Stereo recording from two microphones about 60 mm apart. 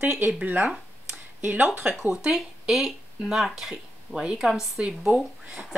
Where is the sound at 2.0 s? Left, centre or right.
Centre.